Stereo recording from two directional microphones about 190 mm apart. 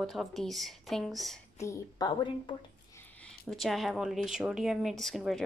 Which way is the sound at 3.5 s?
Centre (ahead or behind).